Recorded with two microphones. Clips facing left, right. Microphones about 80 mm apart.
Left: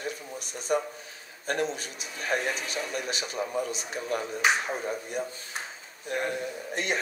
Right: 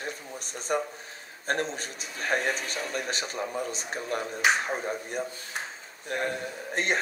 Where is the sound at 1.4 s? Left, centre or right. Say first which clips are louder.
Even; right.